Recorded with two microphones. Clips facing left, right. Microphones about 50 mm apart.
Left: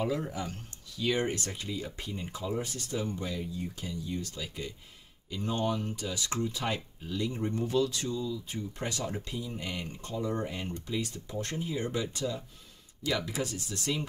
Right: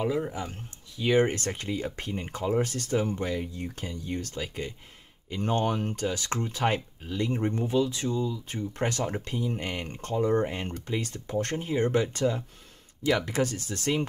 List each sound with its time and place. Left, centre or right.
0.0 s speech: centre
1.3 s speech: right
2.6 s speech: right
3.2 s speech: right
4.4 s speech: right
5.4 s speech: right
7.6 s speech: right
11.0 s speech: right